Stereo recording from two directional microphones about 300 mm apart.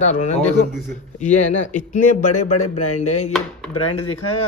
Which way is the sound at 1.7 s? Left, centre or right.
Left.